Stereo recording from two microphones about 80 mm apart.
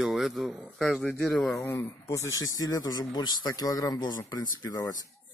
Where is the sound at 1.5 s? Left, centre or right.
Left.